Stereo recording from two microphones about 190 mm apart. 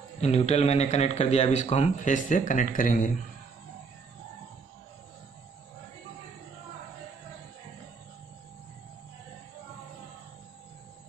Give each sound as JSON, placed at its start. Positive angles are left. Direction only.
{"t": 0.2, "sound": "a man's voice", "side_deg": 35}